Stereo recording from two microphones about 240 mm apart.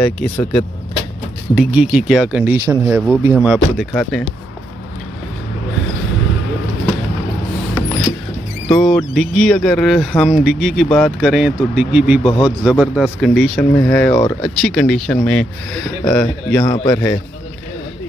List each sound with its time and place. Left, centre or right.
0.0 s speech: centre
1.6 s speech: centre
8.6 s speech: centre
12.2 s a man's voice: centre
12.6 s speech: centre